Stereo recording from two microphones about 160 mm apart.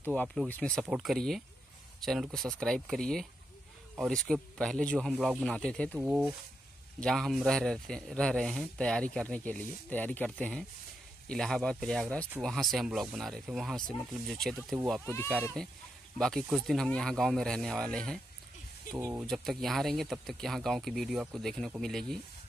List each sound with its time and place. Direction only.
0.1 s speech: 5° left (ahead or behind)
5.9 s speech: 5° right (ahead or behind)
15.0 s speech: 10° left (ahead or behind)
18.9 s speech: 15° right (ahead or behind)
19.2 s speech: centre (ahead or behind)